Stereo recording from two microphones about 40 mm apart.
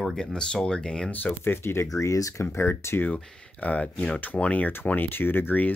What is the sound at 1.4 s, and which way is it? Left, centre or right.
Speech, left.